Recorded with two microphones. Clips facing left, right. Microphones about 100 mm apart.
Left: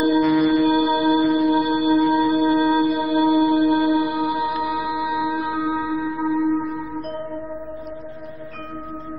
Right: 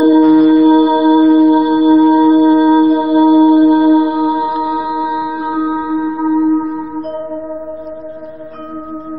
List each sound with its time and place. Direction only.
0.0 s music: 30° right (ahead or behind)